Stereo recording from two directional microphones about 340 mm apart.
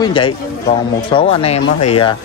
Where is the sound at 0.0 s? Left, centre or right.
Centre.